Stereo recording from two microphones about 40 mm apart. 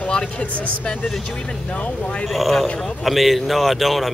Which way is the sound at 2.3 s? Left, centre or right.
Centre.